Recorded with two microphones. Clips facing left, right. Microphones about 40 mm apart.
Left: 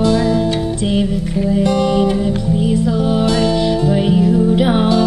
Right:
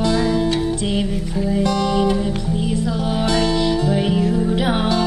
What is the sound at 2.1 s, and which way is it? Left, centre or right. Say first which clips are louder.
Music: left 4 dB; centre.